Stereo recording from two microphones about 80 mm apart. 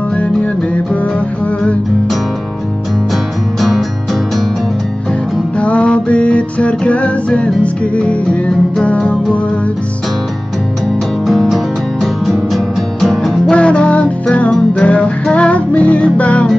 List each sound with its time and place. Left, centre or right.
5.6 s music: centre
11.2 s music: centre
13.6 s music: centre